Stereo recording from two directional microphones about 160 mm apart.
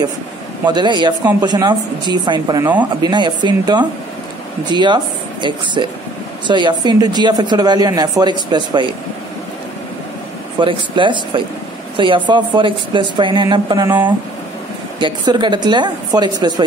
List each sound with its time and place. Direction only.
0.7 s a woman's voice: 30° right (ahead or behind)
2.6 s speech: 10° right (ahead or behind)
3.0 s a woman's voice: 30° right (ahead or behind)
10.6 s a woman's voice: 30° right (ahead or behind)
15.0 s a woman's voice: 30° right (ahead or behind)